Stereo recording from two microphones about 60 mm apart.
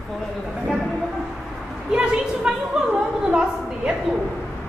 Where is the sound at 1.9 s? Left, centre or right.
Centre.